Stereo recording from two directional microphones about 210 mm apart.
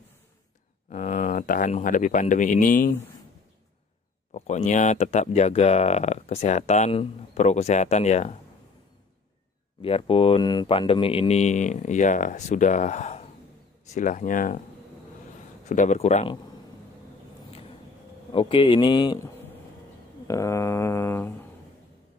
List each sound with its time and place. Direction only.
0.8 s speech: 35° left (ahead or behind)
4.3 s speech: 30° left (ahead or behind)
9.8 s speech: 25° left (ahead or behind)
15.7 s speech: 35° left (ahead or behind)
18.3 s speech: 25° left (ahead or behind)
20.2 s mantra: 15° left (ahead or behind)